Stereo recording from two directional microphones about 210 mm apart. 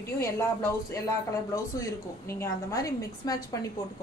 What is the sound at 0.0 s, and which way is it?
A woman's voice, 10° left (ahead or behind).